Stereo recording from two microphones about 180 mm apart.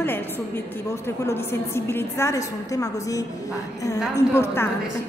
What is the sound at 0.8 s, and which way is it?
A woman's voice, 15° left (ahead or behind).